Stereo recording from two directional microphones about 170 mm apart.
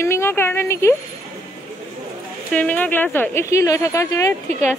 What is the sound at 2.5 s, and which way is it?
Speech, 10° left (ahead or behind).